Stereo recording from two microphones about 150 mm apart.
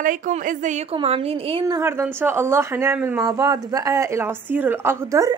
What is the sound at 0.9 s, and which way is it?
Speech, 40° right (ahead or behind).